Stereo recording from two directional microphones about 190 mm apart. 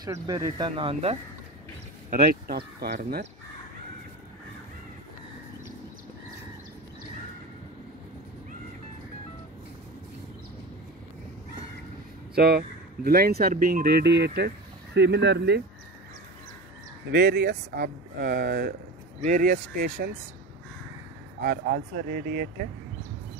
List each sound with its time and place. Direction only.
0.0 s speech: 20° right (ahead or behind)
2.0 s speech: 55° right (ahead or behind)
12.4 s speech: 55° right (ahead or behind)
17.1 s speech: 55° right (ahead or behind)
21.4 s speech: 55° right (ahead or behind)